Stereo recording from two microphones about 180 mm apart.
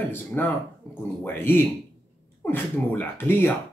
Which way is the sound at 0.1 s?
10° left (ahead or behind).